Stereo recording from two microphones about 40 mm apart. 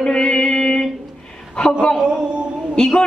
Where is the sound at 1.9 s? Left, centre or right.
Right.